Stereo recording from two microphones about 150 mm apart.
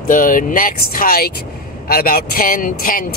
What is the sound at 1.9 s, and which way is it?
Speech, 90° left.